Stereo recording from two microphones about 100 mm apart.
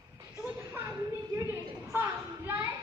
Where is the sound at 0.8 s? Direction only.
30° right (ahead or behind).